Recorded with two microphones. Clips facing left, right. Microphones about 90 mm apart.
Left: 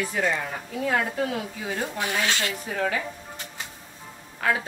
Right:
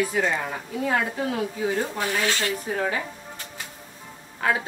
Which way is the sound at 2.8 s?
30° right (ahead or behind).